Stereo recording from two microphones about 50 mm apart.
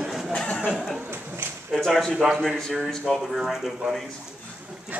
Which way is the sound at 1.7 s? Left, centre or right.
Centre.